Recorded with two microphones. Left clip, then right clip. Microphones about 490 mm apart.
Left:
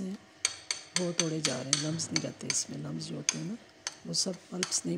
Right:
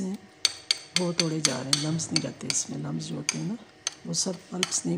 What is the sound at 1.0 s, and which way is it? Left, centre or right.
Speech, centre.